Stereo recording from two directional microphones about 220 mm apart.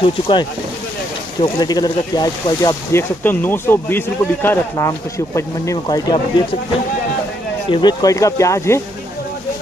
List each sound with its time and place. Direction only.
0.0 s speech: 20° left (ahead or behind)
7.7 s speech: 20° left (ahead or behind)